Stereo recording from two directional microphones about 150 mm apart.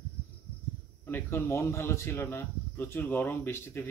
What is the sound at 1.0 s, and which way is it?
Speech, 15° left (ahead or behind).